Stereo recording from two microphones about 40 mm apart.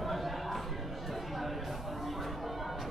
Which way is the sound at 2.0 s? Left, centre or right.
Centre.